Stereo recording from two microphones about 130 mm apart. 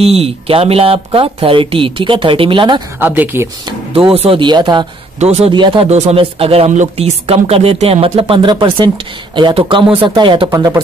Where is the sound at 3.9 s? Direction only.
45° right (ahead or behind).